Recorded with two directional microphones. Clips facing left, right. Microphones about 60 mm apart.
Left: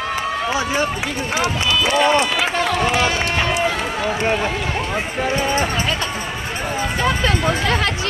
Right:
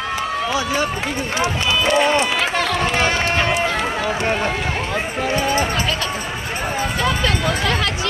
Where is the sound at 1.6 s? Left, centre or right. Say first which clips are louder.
Right 2 dB; right.